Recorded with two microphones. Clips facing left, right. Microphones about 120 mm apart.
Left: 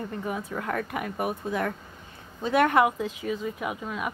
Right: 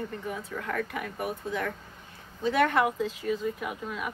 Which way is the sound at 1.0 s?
60° left (ahead or behind).